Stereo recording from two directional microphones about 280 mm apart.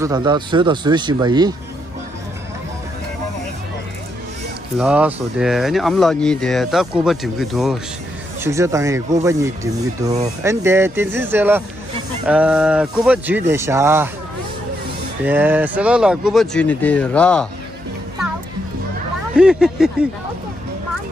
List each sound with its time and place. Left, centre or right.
0.0 s speech: centre
4.7 s speech: centre
15.2 s speech: centre
19.3 s speech: centre